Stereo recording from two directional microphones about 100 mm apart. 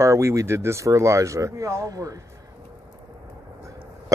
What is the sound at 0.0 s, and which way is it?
Speech, 30° right (ahead or behind).